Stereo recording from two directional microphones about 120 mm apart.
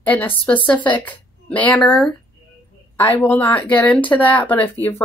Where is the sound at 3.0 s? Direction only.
15° left (ahead or behind).